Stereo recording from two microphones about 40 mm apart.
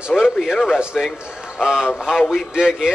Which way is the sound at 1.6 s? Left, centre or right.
Centre.